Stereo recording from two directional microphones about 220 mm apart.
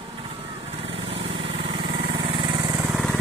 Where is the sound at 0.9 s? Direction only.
25° right (ahead or behind).